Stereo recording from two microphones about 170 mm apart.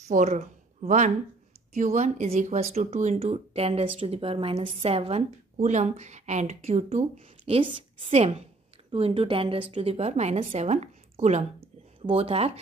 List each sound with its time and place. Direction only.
0.1 s speech: 45° right (ahead or behind)